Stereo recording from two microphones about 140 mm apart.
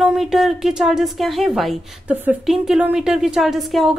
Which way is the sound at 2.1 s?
10° right (ahead or behind).